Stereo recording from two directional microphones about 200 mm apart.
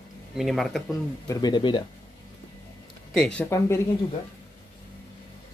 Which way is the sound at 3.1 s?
5° left (ahead or behind).